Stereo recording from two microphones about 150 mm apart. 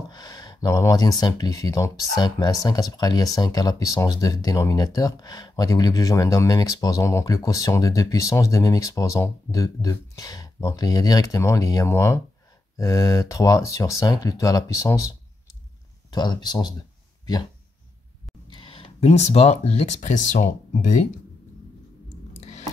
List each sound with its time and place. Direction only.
0.1 s speech: 25° left (ahead or behind)
18.5 s speech: 35° left (ahead or behind); by 21.1 s 55° left (ahead or behind)
22.4 s a sound: 50° left (ahead or behind)